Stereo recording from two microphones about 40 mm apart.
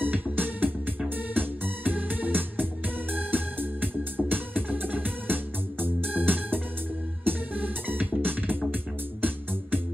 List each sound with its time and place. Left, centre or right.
0.0 s music: right